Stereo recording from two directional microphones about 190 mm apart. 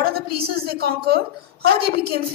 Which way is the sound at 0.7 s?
55° right (ahead or behind).